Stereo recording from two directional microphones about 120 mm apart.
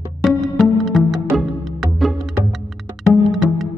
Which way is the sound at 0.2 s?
Centre (ahead or behind).